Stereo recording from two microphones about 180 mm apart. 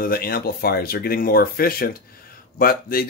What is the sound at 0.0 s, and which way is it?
Speech, 55° left (ahead or behind).